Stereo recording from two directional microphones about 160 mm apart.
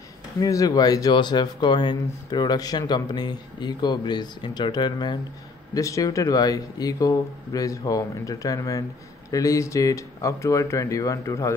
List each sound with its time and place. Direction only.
0.4 s speech: 20° left (ahead or behind)